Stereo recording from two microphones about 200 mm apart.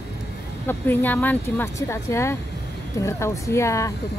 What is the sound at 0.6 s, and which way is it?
Speech, 10° left (ahead or behind).